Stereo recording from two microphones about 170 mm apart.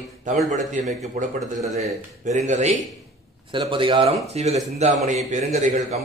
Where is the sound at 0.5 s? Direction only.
45° right (ahead or behind).